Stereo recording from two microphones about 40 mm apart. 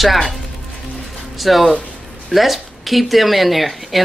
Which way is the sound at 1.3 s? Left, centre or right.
Centre.